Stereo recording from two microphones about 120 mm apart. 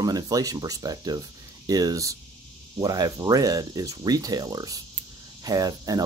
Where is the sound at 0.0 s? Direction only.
30° right (ahead or behind).